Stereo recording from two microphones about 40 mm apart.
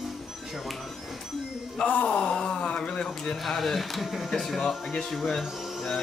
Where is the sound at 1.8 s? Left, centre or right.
Left.